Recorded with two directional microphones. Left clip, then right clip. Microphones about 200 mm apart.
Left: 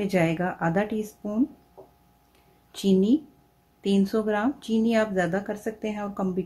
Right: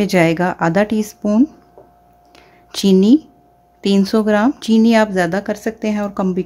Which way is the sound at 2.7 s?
40° right (ahead or behind).